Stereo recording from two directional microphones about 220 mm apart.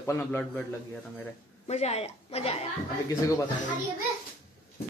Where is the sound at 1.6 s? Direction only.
30° left (ahead or behind).